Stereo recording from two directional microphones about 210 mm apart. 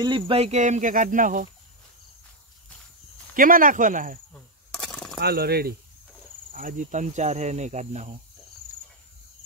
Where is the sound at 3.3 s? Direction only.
40° right (ahead or behind).